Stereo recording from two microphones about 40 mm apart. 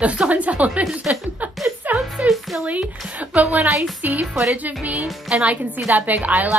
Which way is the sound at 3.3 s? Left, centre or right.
Right.